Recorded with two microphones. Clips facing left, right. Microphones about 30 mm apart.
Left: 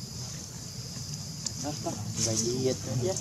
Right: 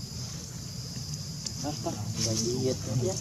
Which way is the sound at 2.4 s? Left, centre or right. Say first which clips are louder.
Left 1 dB; centre.